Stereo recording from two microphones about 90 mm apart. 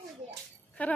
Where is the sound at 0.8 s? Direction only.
15° left (ahead or behind).